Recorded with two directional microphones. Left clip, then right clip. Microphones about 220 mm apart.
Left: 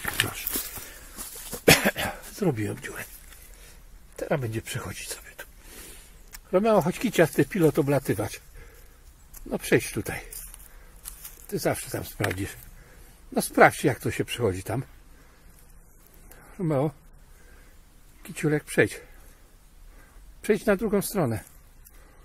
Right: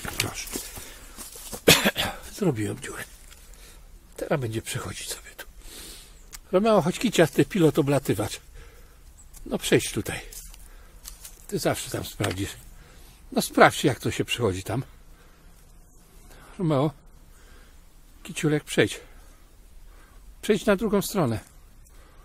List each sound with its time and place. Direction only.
0.2 s dog: centre (ahead or behind)
1.1 s dog: 10° left (ahead or behind)
1.7 s cough: centre (ahead or behind)
2.4 s speech: centre (ahead or behind)
4.2 s speech: centre (ahead or behind)
4.5 s a sound: 5° right (ahead or behind)
6.6 s speech: 5° right (ahead or behind)
9.5 s speech: centre (ahead or behind)
11.4 s speech: centre (ahead or behind)
16.3 s a sound: 5° right (ahead or behind)
18.2 s speech: 5° right (ahead or behind)
20.5 s speech: 5° right (ahead or behind)